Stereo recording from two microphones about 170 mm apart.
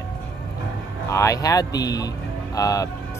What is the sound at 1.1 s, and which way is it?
Speech, 20° left (ahead or behind).